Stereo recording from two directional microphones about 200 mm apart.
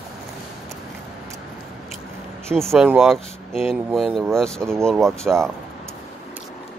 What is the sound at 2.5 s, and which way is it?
Speech, centre (ahead or behind).